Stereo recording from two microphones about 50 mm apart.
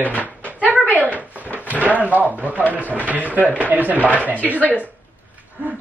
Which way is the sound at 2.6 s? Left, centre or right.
Left.